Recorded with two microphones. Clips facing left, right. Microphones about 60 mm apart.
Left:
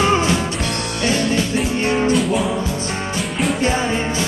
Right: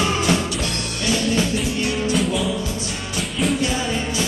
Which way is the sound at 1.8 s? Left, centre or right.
Left.